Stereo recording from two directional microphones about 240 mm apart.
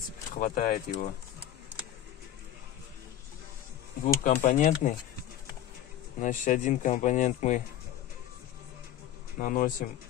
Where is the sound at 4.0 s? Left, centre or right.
Left.